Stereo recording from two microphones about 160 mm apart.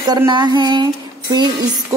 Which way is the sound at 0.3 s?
30° right (ahead or behind).